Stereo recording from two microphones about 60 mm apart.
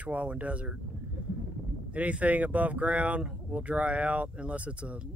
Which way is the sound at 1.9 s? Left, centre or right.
Right.